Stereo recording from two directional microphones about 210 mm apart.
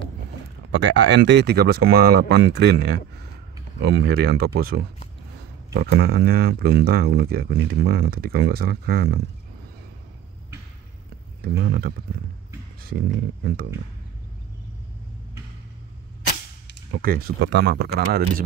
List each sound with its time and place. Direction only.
0.7 s speech: 60° right (ahead or behind)
11.4 s speech: 45° right (ahead or behind)
16.9 s speech: 45° right (ahead or behind)